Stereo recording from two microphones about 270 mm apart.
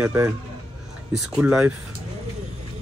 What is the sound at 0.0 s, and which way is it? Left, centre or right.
A man's voice, centre.